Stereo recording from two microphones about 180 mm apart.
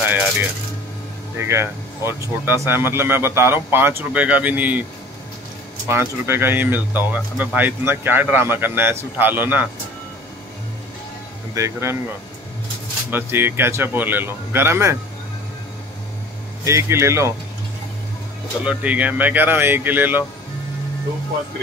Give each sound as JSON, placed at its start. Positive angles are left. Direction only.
{"t": 1.4, "sound": "speech", "side_deg": -15}
{"t": 5.9, "sound": "speech", "side_deg": -15}
{"t": 11.5, "sound": "speech", "side_deg": -15}
{"t": 13.1, "sound": "speech", "side_deg": -10}
{"t": 16.6, "sound": "speech", "side_deg": -15}
{"t": 18.6, "sound": "speech", "side_deg": -5}